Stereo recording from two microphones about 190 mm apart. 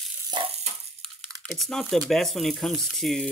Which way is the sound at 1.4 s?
Centre (ahead or behind).